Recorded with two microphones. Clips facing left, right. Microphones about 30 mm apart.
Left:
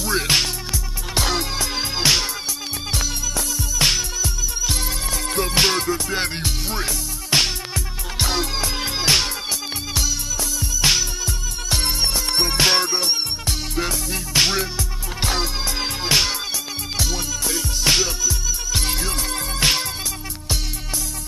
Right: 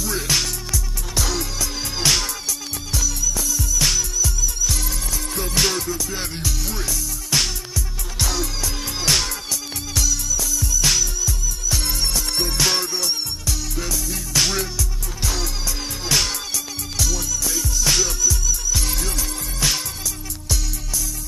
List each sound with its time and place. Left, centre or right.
0.0 s music: left
2.0 s music: centre
2.9 s music: left
3.5 s music: left
10.8 s music: left
11.2 s music: left
15.2 s music: left